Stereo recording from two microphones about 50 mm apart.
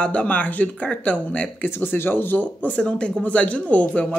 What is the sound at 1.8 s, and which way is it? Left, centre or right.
Speech, left.